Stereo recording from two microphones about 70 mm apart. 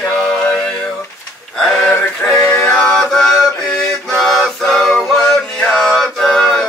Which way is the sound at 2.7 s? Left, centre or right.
Centre.